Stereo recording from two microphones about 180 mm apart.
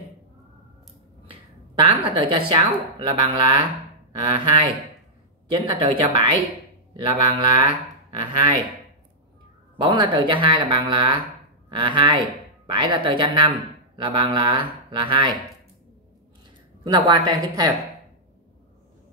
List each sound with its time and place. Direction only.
1.8 s speech: 30° right (ahead or behind)
6.9 s speech: 25° right (ahead or behind)
9.8 s speech: 25° right (ahead or behind)
16.8 s speech: 25° right (ahead or behind)